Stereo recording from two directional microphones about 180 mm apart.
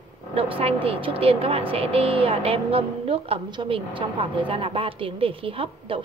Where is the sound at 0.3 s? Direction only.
30° right (ahead or behind).